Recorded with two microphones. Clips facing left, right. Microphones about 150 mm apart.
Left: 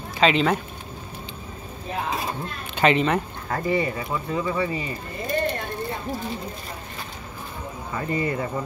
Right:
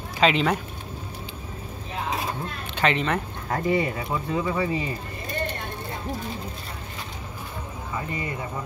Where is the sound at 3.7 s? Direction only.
15° right (ahead or behind).